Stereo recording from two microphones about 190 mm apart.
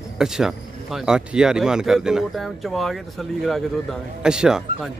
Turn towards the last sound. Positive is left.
turn(degrees=-5)  # may be behind; listen again after turning